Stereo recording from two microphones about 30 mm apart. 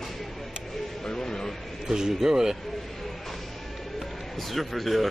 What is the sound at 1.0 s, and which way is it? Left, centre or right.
Speech, left.